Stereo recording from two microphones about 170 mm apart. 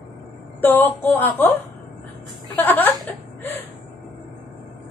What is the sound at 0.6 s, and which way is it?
Speech, 10° left (ahead or behind).